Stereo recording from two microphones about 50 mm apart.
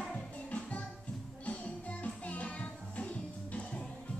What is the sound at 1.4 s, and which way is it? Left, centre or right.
Music, left.